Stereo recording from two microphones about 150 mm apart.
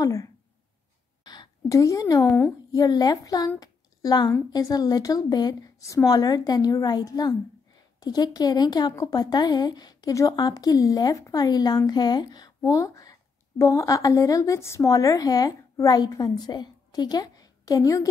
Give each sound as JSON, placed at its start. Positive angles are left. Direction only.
{"t": 0.0, "sound": "a woman's voice", "side_deg": 25}